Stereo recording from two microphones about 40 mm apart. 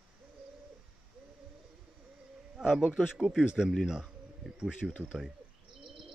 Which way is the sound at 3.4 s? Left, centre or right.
Centre.